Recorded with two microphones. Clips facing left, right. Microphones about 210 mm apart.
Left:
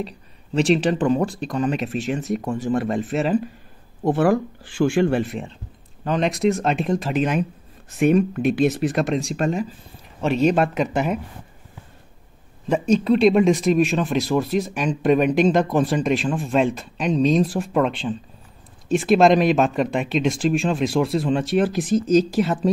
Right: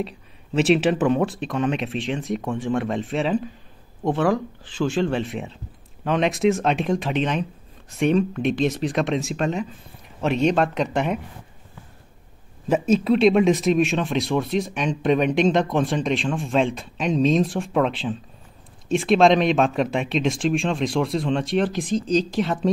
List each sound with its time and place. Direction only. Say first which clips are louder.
0.6 s speech: even; 5° right (ahead or behind)
12.6 s speech: left 1 dB; 5° right (ahead or behind)